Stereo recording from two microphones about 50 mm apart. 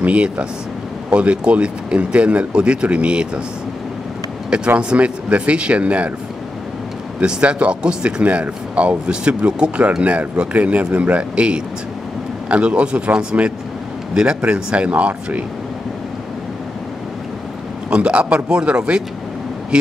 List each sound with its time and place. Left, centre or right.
0.0 s speech: right
4.7 s speech: right
7.2 s speech: right
17.8 s speech: right